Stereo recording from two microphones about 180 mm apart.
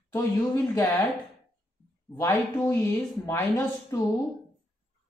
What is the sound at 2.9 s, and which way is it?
Speech, 20° left (ahead or behind).